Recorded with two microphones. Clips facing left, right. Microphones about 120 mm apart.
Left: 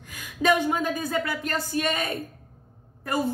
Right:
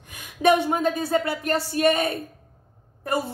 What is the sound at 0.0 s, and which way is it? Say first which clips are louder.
A woman's voice: right 4 dB; 25° right (ahead or behind).